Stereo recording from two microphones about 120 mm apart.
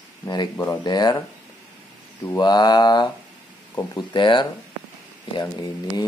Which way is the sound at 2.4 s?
35° left (ahead or behind).